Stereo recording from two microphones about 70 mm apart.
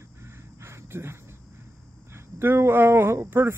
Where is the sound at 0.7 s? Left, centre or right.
Right.